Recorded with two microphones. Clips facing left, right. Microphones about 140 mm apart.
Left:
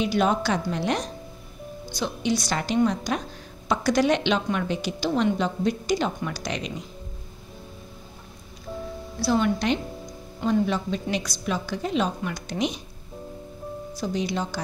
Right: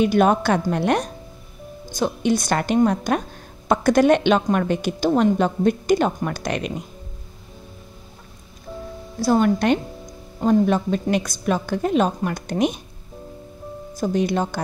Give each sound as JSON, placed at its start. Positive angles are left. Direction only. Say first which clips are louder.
{"t": 0.0, "sound": "a woman's voice", "louder": "right 6 dB", "side_deg": -50}
{"t": 9.2, "sound": "a woman's voice", "louder": "right 5 dB", "side_deg": -45}
{"t": 13.9, "sound": "a woman's voice", "louder": "right 7 dB", "side_deg": -50}